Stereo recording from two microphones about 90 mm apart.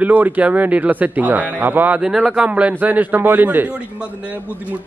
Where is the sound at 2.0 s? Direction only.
10° right (ahead or behind).